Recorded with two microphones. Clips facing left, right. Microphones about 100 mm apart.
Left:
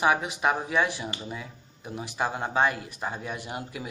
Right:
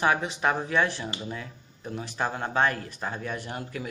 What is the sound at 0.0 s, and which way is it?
Speech, 10° left (ahead or behind).